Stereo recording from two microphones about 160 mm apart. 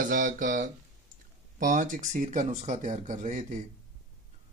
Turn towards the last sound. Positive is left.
turn(degrees=-50)  # may be behind; listen again after turning